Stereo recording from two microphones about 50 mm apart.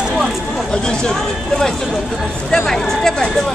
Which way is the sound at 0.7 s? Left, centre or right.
Centre.